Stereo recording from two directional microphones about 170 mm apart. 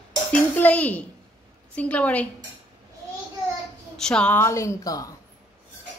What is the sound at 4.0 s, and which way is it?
A woman's voice, 5° left (ahead or behind).